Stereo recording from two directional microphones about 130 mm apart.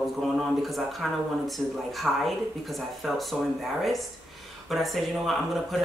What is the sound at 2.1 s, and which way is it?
Speech, 5° right (ahead or behind).